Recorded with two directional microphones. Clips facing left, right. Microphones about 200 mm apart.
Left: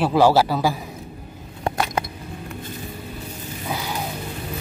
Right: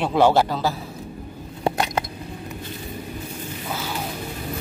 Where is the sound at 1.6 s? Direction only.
20° right (ahead or behind).